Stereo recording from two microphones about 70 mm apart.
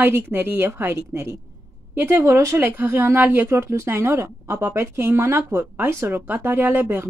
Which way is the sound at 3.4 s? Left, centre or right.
Right.